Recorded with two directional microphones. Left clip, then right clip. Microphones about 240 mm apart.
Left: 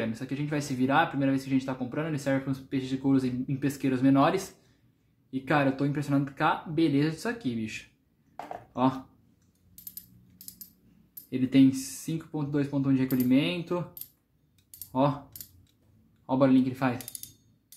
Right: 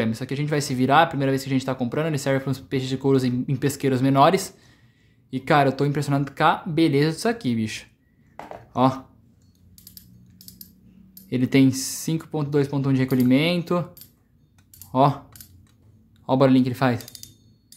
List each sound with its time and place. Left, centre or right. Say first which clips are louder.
0.0 s speech: right 6 dB; right
11.2 s speech: right 4 dB; right
14.9 s speech: right 8 dB; right